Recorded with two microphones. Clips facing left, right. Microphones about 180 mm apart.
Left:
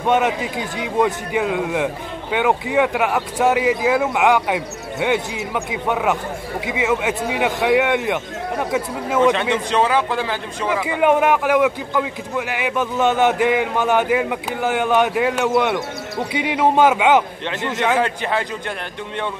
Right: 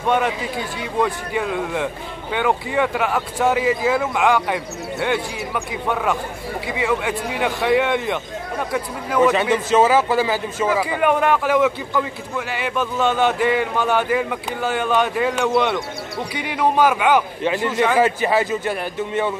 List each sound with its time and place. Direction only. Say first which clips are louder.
0.0 s a man's voice: left 2 dB; 20° left (ahead or behind)
9.2 s a man's voice: right 1 dB; 5° right (ahead or behind)
11.0 s a man's voice: left 5 dB; 15° left (ahead or behind)
17.9 s a man's voice: right 3 dB; 5° right (ahead or behind)